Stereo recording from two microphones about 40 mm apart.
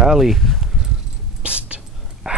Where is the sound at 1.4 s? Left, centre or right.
Right.